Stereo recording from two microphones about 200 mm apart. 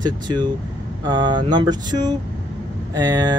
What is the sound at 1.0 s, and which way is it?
Speech, 20° right (ahead or behind).